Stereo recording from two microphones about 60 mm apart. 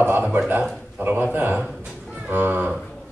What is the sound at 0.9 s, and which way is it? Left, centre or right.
A man's voice, right.